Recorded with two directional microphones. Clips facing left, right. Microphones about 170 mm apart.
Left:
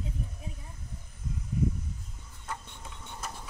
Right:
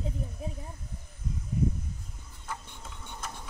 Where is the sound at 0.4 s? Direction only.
35° right (ahead or behind).